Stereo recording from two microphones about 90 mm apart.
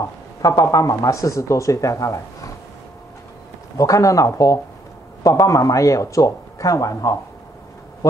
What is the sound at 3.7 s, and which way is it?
Speech, 35° left (ahead or behind).